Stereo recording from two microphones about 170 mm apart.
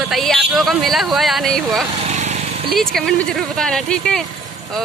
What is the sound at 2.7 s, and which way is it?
Speech, 5° left (ahead or behind).